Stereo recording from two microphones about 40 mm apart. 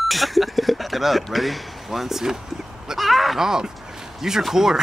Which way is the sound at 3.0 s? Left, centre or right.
Centre.